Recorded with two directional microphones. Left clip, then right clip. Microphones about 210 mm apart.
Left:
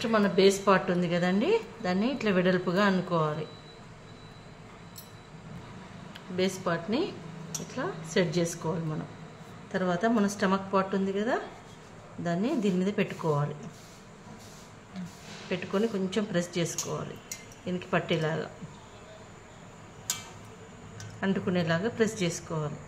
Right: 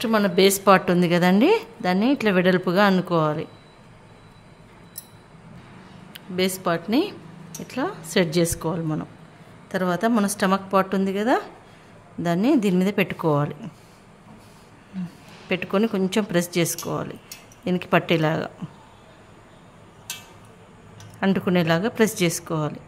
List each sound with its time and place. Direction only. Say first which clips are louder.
0.0 s a woman's voice: right 5 dB; 50° right (ahead or behind)
6.1 s a woman's voice: right 6 dB; 50° right (ahead or behind)
15.5 s a woman's voice: right 7 dB; 55° right (ahead or behind)
21.2 s a woman's voice: right 8 dB; 55° right (ahead or behind)